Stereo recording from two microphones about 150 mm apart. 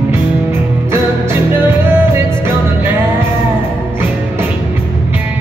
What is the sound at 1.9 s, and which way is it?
Music, 15° right (ahead or behind).